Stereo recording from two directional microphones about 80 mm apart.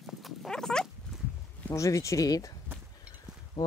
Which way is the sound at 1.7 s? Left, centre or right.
Left.